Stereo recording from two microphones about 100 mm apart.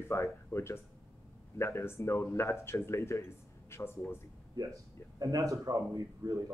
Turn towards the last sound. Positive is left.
turn(degrees=-35)  # may be behind; listen again after turning